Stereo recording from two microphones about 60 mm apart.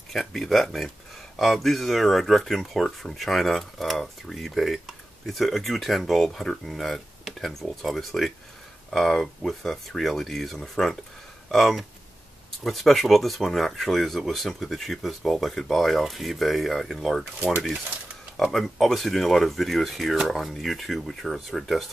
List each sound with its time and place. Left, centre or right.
0.1 s speech: centre
18.4 s speech: centre